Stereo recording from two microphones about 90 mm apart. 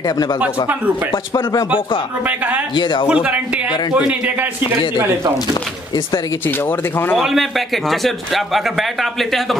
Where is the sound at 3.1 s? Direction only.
15° right (ahead or behind); by 5.3 s 30° right (ahead or behind).